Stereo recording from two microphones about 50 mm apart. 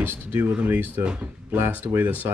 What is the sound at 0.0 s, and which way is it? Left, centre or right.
Speech, right.